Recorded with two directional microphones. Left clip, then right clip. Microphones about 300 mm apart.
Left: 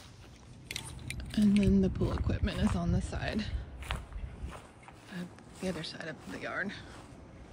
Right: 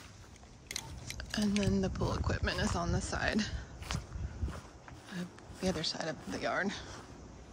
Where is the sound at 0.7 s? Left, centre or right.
Centre.